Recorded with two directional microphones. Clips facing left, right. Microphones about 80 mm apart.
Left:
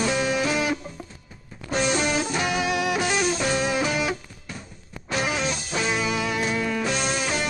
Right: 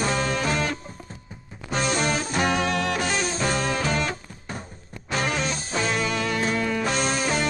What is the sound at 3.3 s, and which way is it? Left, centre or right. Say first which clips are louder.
Music: left 1 dB; right.